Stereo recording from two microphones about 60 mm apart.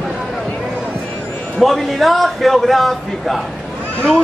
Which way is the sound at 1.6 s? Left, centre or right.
Centre.